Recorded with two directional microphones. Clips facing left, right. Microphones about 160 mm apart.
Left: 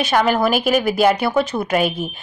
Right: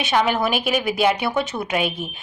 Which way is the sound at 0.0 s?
Centre (ahead or behind).